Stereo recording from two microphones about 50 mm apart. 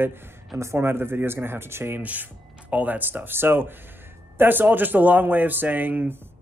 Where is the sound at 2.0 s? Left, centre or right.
Right.